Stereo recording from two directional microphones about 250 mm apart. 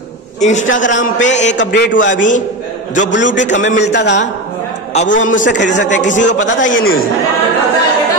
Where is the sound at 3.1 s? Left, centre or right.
Left.